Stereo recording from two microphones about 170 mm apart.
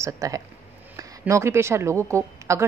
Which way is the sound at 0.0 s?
20° right (ahead or behind).